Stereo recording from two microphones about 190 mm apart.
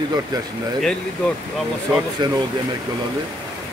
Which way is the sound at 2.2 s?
25° right (ahead or behind).